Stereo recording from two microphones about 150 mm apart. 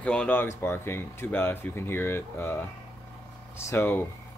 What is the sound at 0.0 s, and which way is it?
Speech, 5° left (ahead or behind).